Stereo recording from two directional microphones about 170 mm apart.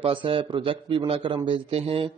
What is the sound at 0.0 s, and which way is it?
A man's voice, 30° right (ahead or behind).